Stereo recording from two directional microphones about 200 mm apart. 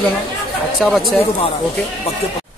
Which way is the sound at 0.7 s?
Centre (ahead or behind).